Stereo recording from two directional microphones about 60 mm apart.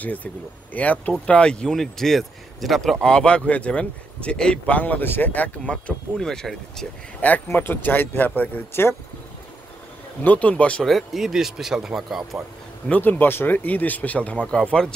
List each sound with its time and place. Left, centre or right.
0.0 s speech: left
1.8 s speech: centre
4.7 s speech: left
6.1 s speech: centre
7.2 s speech: left
10.2 s speech: left
10.8 s speech: centre
12.8 s speech: left